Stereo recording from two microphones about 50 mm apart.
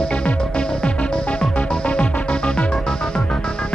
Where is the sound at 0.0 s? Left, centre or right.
Left.